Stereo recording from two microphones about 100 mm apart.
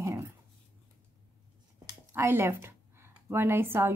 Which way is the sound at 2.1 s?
25° right (ahead or behind).